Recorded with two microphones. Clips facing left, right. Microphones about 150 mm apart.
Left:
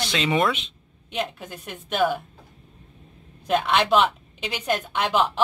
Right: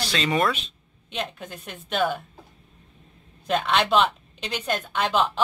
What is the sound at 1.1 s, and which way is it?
A woman's voice, 5° left (ahead or behind).